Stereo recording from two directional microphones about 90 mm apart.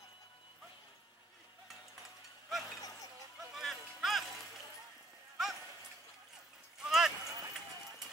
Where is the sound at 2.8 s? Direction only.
40° left (ahead or behind).